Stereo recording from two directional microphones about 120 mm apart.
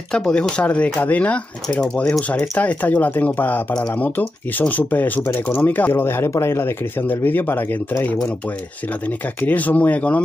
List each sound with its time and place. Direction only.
0.1 s speech: 5° left (ahead or behind)